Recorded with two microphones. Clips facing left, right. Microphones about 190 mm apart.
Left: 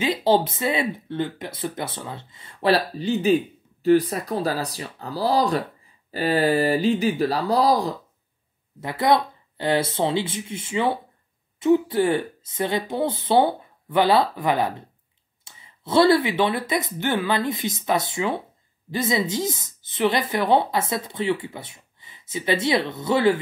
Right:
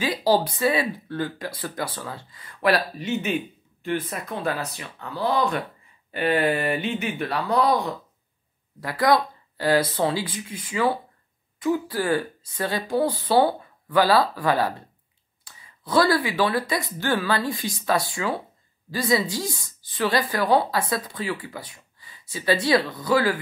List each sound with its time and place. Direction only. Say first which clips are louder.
0.0 s a woman's voice: left 2 dB; 25° left (ahead or behind)
8.8 s a woman's voice: even; 25° left (ahead or behind)